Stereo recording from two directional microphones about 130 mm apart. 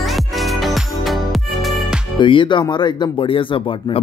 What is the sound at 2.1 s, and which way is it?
A man's voice, 40° left (ahead or behind).